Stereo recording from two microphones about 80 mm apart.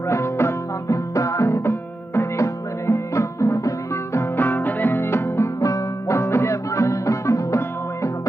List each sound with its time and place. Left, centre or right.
0.1 s music: left
4.4 s music: left